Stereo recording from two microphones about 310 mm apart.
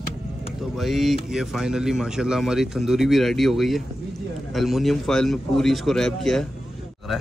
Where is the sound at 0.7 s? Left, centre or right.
Centre.